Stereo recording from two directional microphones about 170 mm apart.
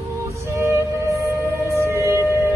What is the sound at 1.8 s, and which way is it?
Music, 15° right (ahead or behind).